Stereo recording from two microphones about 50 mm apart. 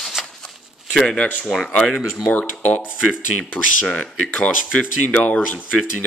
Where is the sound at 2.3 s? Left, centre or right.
Left.